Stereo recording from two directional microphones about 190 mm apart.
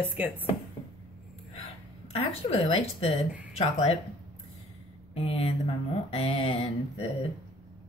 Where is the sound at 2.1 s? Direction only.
30° left (ahead or behind).